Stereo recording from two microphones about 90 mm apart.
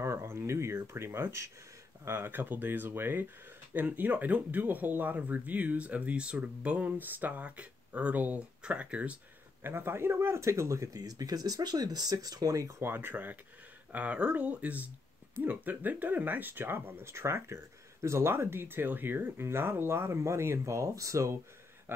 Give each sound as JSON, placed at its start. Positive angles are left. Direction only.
{"t": 0.0, "sound": "speech", "side_deg": -30}
{"t": 9.7, "sound": "speech", "side_deg": -25}